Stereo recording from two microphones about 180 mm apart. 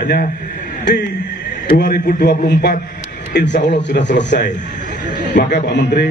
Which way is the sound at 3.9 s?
80° left.